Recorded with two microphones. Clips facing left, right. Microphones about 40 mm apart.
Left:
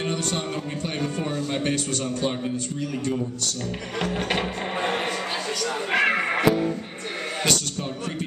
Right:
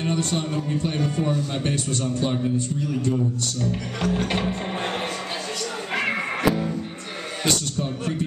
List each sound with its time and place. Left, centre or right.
0.8 s a man's voice: left
4.0 s music: centre
5.9 s a sound: left
6.4 s music: centre